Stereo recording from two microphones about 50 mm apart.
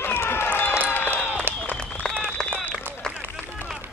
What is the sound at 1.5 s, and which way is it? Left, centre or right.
Applause, right.